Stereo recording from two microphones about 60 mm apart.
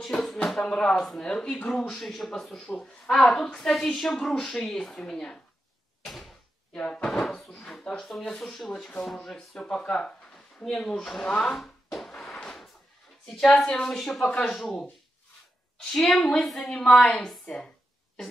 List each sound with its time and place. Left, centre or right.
0.7 s speech: centre
6.0 s door: centre
6.8 s speech: centre
11.5 s a sound: centre
13.4 s speech: centre
15.9 s a woman's voice: centre